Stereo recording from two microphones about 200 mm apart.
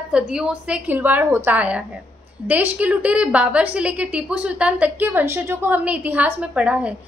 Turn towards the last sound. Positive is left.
turn(degrees=-5)  # may be behind; listen again after turning